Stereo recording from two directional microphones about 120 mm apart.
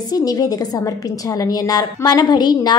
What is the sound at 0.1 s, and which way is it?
A woman's voice, 30° left (ahead or behind).